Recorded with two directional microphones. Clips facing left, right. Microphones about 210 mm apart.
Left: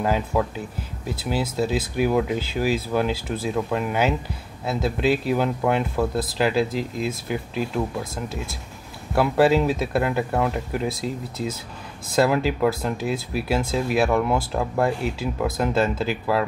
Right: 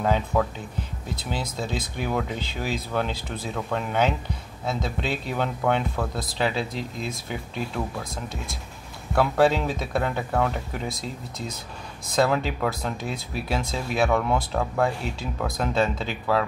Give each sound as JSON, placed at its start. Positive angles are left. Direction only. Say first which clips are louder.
{"t": 0.0, "sound": "speech", "louder": "left 1 dB", "side_deg": 5}
{"t": 9.1, "sound": "speech", "louder": "left 2 dB", "side_deg": 5}